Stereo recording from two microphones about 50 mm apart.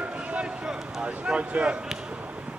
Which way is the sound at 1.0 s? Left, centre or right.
Right.